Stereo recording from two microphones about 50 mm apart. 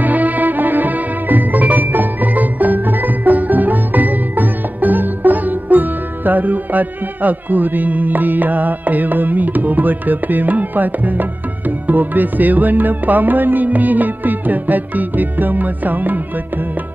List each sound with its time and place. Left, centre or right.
0.0 s music: right